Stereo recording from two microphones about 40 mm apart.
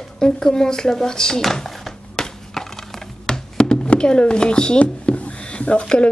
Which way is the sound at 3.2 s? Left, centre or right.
Centre.